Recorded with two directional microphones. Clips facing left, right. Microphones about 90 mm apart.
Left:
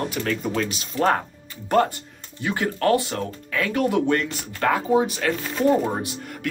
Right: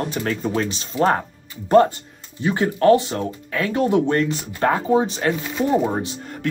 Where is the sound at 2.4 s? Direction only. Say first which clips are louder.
Right 6 dB; 25° right (ahead or behind).